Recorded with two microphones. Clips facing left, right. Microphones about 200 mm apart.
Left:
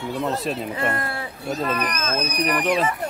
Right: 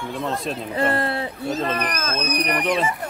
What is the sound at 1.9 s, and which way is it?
Speech, 40° right (ahead or behind).